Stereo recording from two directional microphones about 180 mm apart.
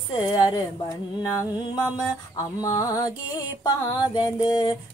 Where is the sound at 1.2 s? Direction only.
20° left (ahead or behind).